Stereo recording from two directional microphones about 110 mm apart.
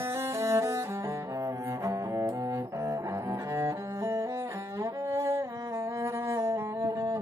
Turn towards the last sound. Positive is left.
turn(degrees=-25)  # may be behind; listen again after turning